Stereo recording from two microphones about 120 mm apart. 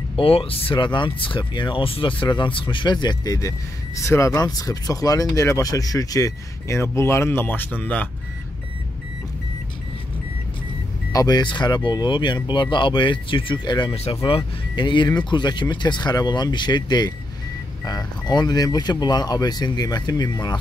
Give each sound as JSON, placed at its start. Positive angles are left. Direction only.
{"t": 0.1, "sound": "speech", "side_deg": 50}
{"t": 11.1, "sound": "speech", "side_deg": 35}